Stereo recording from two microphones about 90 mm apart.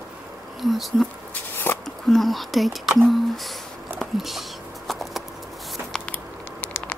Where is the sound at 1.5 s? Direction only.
25° left (ahead or behind).